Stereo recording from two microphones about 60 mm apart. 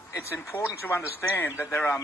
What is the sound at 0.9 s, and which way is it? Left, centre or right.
Speech, left.